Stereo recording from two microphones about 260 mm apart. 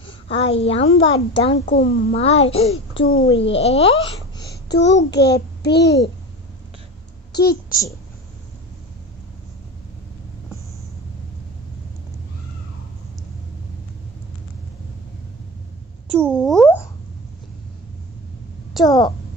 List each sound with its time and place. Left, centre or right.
0.3 s a woman's voice: left
1.8 s a child's voice: left
2.1 s a woman's voice: left
3.0 s a child's voice: left
3.5 s speech: left
4.5 s a child's voice: left
7.3 s a woman's voice: left
16.2 s speech: centre
18.9 s a woman's voice: centre